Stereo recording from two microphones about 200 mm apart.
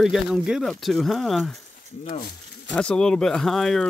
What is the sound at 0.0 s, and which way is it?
Speech, centre (ahead or behind).